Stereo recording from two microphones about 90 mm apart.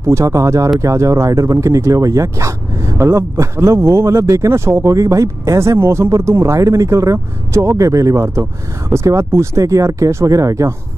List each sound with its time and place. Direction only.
0.0 s speech: 35° right (ahead or behind)